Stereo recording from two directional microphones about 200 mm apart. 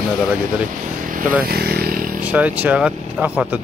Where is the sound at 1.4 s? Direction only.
50° right (ahead or behind).